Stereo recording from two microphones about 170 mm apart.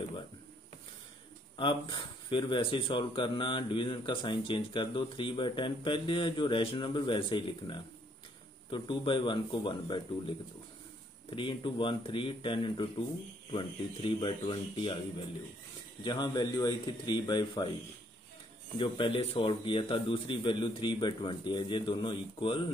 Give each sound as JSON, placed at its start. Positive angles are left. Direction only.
{"t": 1.6, "sound": "speech", "side_deg": 30}
{"t": 18.8, "sound": "speech", "side_deg": 30}